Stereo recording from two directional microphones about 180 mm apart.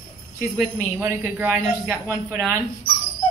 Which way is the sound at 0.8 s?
10° right (ahead or behind).